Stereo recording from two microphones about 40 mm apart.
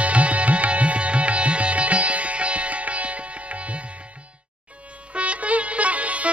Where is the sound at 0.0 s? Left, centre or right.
Right.